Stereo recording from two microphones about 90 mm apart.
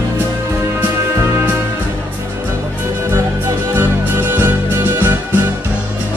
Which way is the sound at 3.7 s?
25° right (ahead or behind).